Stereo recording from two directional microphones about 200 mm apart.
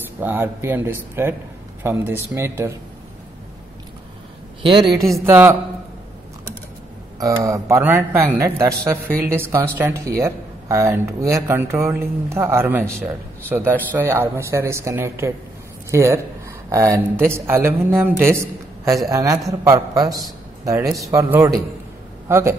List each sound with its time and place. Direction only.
0.2 s speech: 10° right (ahead or behind)
4.6 s speech: 20° right (ahead or behind)
7.2 s speech: 15° right (ahead or behind)